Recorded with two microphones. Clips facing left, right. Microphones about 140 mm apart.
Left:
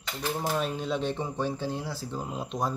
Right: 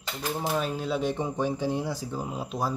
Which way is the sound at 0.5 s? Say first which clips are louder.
Right 1 dB; centre (ahead or behind).